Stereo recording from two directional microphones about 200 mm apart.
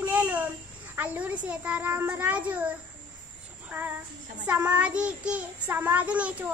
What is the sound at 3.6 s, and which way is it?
Child singing, 10° right (ahead or behind).